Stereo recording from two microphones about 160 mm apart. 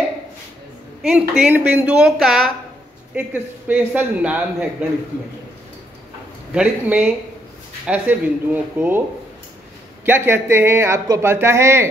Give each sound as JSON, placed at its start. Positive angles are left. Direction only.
{"t": 1.0, "sound": "a woman's voice", "side_deg": -5}
{"t": 6.5, "sound": "a woman's voice", "side_deg": -5}
{"t": 10.0, "sound": "speech", "side_deg": -15}